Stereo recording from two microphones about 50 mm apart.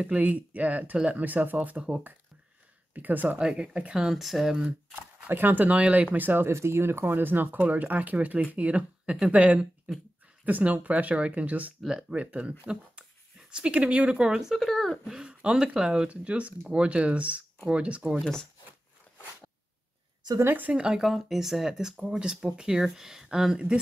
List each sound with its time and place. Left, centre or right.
0.0 s speech: right
2.9 s speech: right
3.3 s speech: centre
4.1 s speech: centre
5.3 s speech: right
6.1 s speech: right
6.4 s speech: right; by 14.4 s centre
14.5 s speech: centre
15.0 s speech: centre
16.1 s speech: right
18.2 s speech: centre
20.4 s speech: right
20.7 s speech: centre